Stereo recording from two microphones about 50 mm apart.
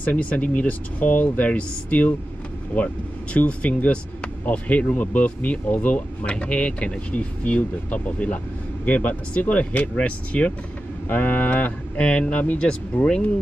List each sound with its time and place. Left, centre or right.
0.0 s speech: left
11.1 s speech: left